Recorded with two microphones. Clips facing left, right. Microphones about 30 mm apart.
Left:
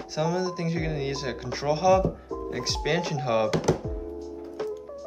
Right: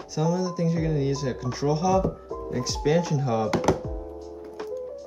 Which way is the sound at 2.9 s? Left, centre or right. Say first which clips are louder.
Right 3 dB; left.